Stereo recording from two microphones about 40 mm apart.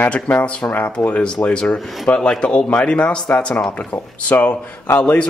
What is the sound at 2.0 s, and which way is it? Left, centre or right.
Speech, left.